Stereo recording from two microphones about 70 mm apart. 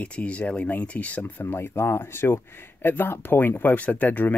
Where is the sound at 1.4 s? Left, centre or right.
Left.